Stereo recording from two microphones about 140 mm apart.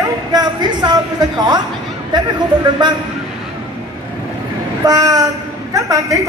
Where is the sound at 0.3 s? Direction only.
30° right (ahead or behind).